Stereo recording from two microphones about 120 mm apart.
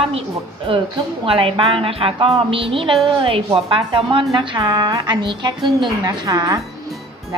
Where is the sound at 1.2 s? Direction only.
50° right (ahead or behind).